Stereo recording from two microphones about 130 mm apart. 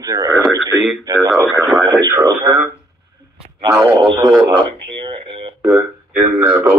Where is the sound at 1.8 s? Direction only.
30° right (ahead or behind).